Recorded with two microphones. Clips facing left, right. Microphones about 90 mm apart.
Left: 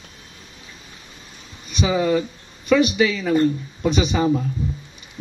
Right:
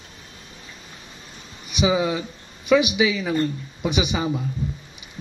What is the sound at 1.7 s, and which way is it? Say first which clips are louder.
A man's voice: left 2 dB; 10° right (ahead or behind).